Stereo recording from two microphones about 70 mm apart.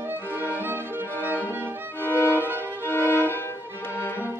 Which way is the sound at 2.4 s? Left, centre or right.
Right.